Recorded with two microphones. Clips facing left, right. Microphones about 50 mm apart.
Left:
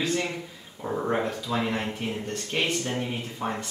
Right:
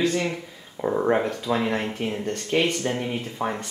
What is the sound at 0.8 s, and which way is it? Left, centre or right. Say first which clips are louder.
Speech: right 7 dB; right.